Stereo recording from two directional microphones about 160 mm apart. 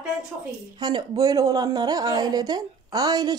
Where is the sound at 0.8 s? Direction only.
25° right (ahead or behind).